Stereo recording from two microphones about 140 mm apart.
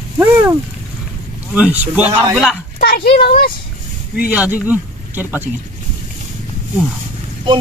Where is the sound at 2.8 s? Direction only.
90° left.